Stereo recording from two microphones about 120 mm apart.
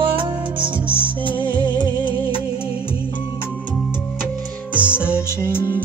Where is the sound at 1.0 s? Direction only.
15° left (ahead or behind).